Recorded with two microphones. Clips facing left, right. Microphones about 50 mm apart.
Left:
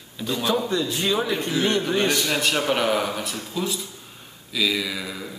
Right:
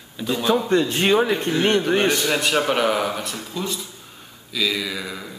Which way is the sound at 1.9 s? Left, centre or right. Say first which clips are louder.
Right 3 dB; right.